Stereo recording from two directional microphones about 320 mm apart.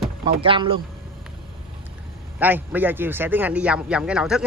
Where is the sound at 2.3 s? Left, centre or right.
Centre.